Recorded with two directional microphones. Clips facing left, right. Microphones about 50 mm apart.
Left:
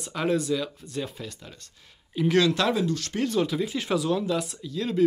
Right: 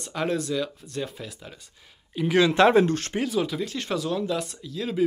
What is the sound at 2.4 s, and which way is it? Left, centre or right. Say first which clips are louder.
Speech: right 6 dB; right.